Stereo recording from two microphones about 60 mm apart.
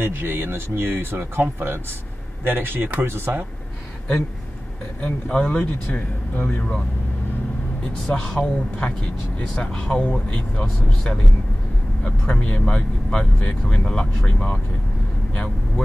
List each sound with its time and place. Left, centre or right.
0.0 s speech: right
5.0 s speech: centre
5.9 s speech: left
7.8 s speech: centre
8.4 s speech: left